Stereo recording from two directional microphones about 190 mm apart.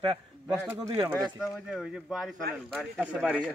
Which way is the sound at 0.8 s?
25° right (ahead or behind).